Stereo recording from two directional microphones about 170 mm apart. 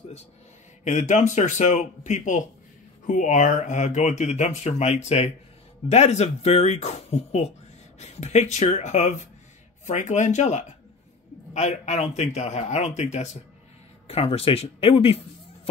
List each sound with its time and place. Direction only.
0.8 s speech: 45° left (ahead or behind)